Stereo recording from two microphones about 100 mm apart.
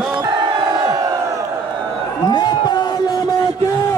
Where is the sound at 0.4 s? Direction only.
50° right (ahead or behind).